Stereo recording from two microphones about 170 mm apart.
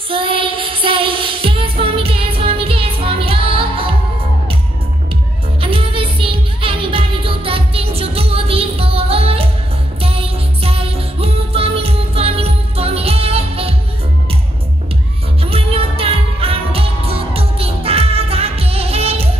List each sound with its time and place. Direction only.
0.1 s music: 30° right (ahead or behind)
5.6 s music: 30° right (ahead or behind)
15.5 s music: 35° right (ahead or behind)